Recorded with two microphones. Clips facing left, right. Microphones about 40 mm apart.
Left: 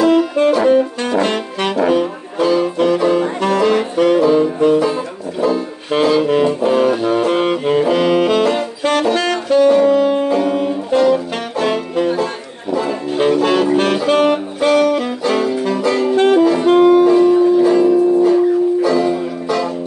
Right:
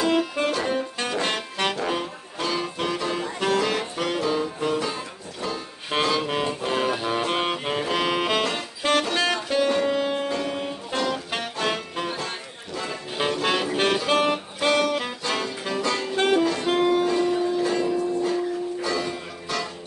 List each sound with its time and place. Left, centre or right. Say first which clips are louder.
0.0 s brass instrument: left 10 dB; centre
3.3 s music: left 9 dB; centre
7.8 s saxophone: left 9 dB; centre
8.5 s music: left 8 dB; centre
9.2 s saxophone: left 10 dB; centre
10.1 s music: left 11 dB; centre
14.7 s saxophone: left 9 dB; centre